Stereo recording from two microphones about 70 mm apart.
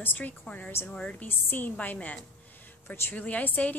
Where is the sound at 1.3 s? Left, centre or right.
Left.